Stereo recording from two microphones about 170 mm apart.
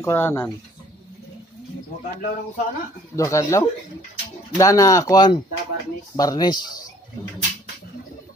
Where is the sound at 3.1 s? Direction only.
20° left (ahead or behind).